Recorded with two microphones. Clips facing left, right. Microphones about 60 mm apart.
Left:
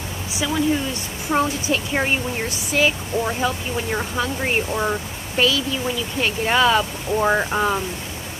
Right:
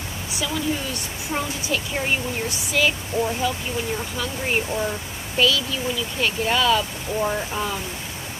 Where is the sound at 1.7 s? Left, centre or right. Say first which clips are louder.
Even; left.